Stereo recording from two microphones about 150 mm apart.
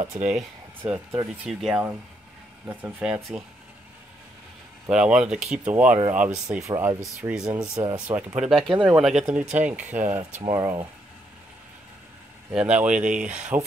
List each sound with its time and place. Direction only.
0.8 s speech: 20° right (ahead or behind)
1.4 s speech: 5° right (ahead or behind)
4.8 s speech: 5° right (ahead or behind)
7.2 s speech: 5° right (ahead or behind)
12.5 s speech: 5° right (ahead or behind)